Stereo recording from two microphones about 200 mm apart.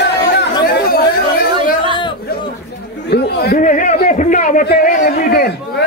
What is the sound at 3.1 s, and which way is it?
A man's voice, 55° left (ahead or behind).